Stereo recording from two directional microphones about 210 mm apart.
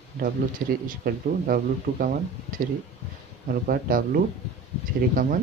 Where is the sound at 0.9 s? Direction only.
45° right (ahead or behind).